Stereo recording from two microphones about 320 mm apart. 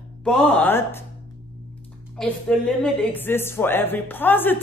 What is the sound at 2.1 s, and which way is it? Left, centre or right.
A woman's voice, centre.